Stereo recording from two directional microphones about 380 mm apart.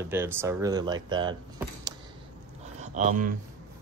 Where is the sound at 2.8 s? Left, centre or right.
Centre.